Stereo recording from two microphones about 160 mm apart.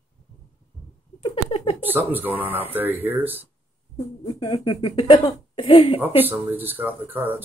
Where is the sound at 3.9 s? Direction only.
20° left (ahead or behind).